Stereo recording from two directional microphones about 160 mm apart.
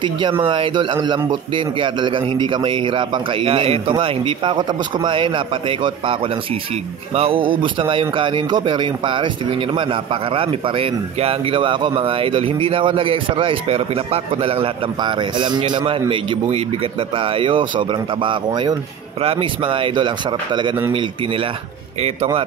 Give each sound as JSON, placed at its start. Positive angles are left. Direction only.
{"t": 0.0, "sound": "speech", "side_deg": -30}